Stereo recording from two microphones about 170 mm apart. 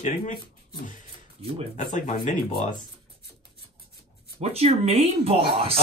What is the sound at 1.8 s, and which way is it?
Speech, 50° left (ahead or behind).